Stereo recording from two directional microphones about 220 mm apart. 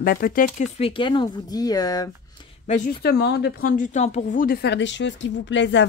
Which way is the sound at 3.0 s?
45° left (ahead or behind).